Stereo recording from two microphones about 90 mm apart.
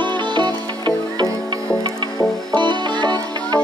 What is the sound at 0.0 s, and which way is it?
Music, 55° right (ahead or behind).